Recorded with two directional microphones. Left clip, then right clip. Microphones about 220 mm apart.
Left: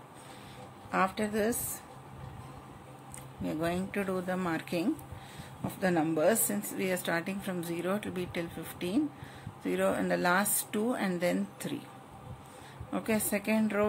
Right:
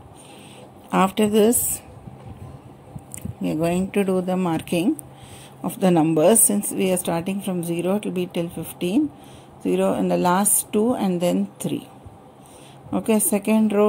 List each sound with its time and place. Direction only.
0.9 s a woman's voice: 35° right (ahead or behind)
3.4 s a woman's voice: 30° right (ahead or behind)
12.9 s speech: 25° right (ahead or behind)